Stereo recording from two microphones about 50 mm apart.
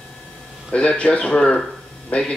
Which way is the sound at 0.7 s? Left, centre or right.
Left.